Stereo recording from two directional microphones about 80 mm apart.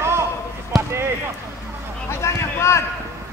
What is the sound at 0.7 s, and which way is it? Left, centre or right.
Basketball bounce, right.